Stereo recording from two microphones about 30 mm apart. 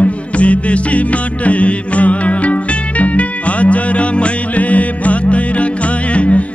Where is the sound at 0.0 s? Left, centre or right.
Left.